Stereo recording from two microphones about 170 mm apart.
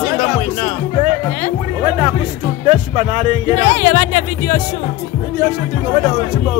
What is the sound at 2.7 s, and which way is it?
Speech, 35° right (ahead or behind).